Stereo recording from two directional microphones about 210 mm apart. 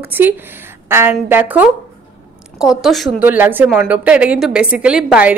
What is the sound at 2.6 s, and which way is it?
A woman's voice, centre (ahead or behind).